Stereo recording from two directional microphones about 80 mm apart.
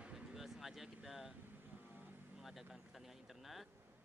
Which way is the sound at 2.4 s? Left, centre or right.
Centre.